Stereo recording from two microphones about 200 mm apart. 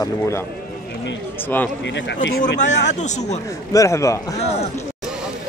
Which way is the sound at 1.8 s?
60° left (ahead or behind).